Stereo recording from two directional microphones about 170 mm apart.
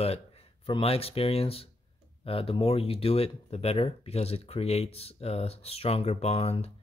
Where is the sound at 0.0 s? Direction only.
35° left (ahead or behind).